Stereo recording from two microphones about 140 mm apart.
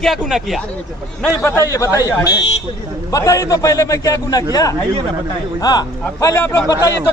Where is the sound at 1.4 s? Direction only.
20° left (ahead or behind).